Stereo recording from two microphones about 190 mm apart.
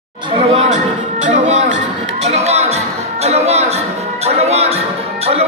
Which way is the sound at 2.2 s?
35° right (ahead or behind).